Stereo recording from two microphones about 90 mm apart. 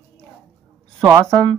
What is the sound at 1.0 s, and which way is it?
Speech, 40° right (ahead or behind).